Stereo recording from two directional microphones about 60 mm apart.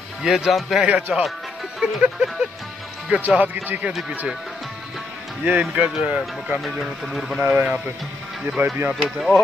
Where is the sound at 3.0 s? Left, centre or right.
Right.